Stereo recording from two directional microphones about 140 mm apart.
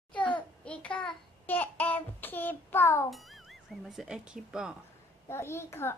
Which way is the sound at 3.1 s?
Centre (ahead or behind).